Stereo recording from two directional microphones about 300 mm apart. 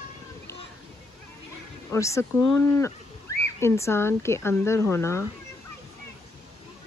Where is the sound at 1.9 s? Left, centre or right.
Centre.